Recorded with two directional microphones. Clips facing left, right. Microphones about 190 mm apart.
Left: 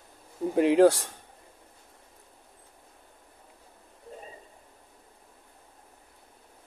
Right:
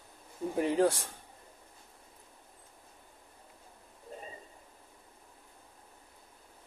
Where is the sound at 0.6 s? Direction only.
85° left.